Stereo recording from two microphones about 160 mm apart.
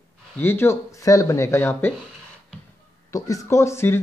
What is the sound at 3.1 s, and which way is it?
Speech, 20° left (ahead or behind).